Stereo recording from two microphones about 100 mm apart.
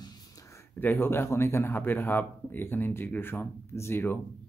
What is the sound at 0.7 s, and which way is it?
Speech, 20° left (ahead or behind).